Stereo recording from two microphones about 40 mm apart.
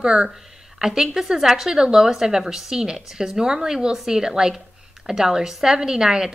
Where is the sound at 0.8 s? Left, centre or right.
Centre.